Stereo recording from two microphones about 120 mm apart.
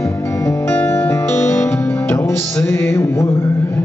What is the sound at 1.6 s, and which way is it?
Music, 5° left (ahead or behind).